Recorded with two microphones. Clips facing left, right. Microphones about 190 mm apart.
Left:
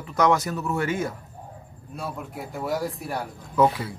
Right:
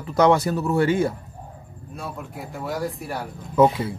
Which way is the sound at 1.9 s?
Centre (ahead or behind).